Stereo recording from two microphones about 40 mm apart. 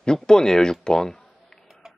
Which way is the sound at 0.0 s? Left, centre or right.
Centre.